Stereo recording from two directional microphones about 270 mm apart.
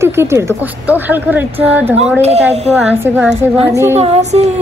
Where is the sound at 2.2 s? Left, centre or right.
Right.